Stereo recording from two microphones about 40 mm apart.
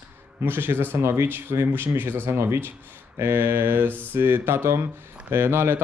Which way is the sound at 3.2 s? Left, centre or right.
Right.